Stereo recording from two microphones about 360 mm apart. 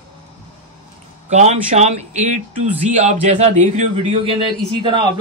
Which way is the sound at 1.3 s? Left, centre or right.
Centre.